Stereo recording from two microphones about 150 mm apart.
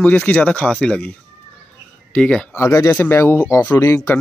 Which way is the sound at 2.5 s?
15° left (ahead or behind).